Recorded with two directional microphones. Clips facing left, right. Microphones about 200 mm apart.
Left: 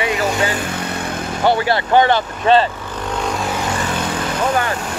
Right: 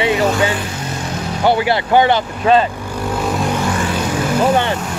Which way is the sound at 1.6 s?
15° right (ahead or behind).